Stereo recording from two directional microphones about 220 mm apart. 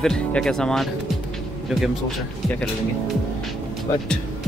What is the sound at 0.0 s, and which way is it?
Speech, centre (ahead or behind).